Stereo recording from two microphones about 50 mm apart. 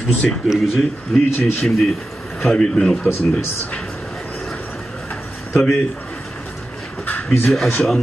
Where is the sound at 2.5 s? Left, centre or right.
Centre.